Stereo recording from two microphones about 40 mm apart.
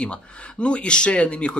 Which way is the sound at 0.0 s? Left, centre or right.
Left.